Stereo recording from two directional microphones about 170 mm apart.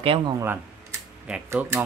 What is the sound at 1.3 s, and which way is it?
Speech, 10° right (ahead or behind).